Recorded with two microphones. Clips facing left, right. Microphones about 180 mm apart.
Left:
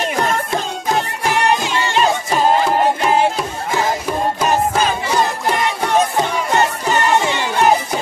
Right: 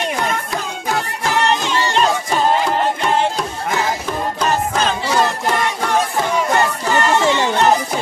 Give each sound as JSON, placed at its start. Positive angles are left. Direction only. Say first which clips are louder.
{"t": 0.9, "sound": "music", "louder": "even", "side_deg": 15}
{"t": 2.0, "sound": "music", "louder": "left 2 dB", "side_deg": 5}
{"t": 4.4, "sound": "music", "louder": "left 1 dB", "side_deg": 10}
{"t": 6.5, "sound": "music", "louder": "even", "side_deg": 20}